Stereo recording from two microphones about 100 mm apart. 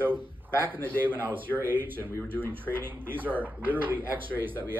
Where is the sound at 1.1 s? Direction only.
20° right (ahead or behind).